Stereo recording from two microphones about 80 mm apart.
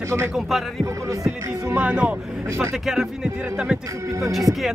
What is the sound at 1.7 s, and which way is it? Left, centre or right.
Speech, centre.